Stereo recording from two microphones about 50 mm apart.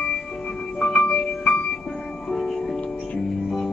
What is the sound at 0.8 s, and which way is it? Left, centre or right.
Music, centre.